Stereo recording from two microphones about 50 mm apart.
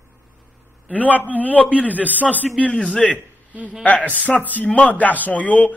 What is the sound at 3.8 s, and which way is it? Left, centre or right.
A man's voice, left.